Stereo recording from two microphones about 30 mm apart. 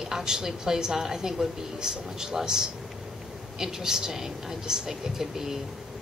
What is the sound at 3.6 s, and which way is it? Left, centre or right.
A woman's voice, centre.